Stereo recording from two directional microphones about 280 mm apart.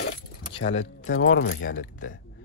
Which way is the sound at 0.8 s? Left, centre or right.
Left.